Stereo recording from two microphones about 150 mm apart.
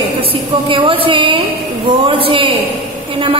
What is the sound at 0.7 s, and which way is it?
A woman's voice, 35° right (ahead or behind).